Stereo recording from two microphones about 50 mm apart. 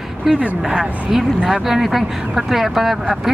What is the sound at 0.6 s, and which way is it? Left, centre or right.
Speech, centre.